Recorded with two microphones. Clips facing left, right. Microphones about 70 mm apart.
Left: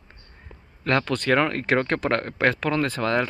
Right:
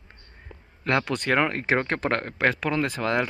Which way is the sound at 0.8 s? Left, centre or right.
Centre.